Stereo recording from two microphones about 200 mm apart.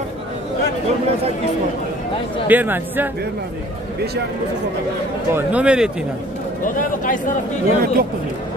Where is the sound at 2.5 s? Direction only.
10° right (ahead or behind).